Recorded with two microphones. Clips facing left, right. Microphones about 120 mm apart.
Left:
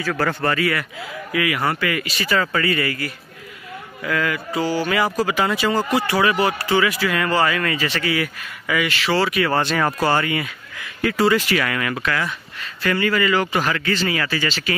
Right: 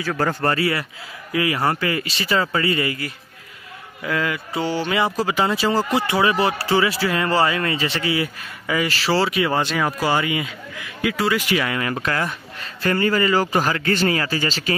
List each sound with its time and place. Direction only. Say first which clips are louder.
0.0 s speech: even; 20° right (ahead or behind)
0.4 s a man's voice: even; 35° right (ahead or behind); by 11.3 s 5° right (ahead or behind)
11.3 s speech: left 1 dB; 20° right (ahead or behind)
12.0 s a man's voice: even; 40° right (ahead or behind)